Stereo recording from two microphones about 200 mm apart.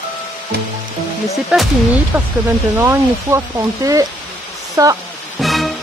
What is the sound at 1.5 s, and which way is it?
Speech, 5° right (ahead or behind).